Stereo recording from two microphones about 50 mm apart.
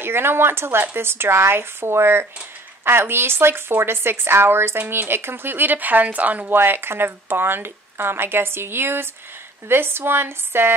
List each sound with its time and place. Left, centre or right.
0.0 s speech: right
6.5 s speech: right